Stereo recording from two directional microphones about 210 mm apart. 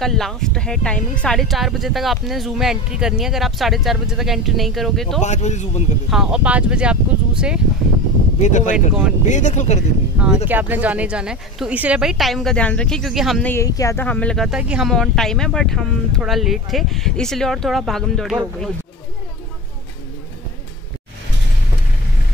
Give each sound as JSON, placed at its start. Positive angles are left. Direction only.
{"t": 0.0, "sound": "speech", "side_deg": 0}
{"t": 5.2, "sound": "speech", "side_deg": 35}
{"t": 6.0, "sound": "speech", "side_deg": 0}
{"t": 8.4, "sound": "speech", "side_deg": 35}
{"t": 10.5, "sound": "speech", "side_deg": -10}
{"t": 13.5, "sound": "speech", "side_deg": 15}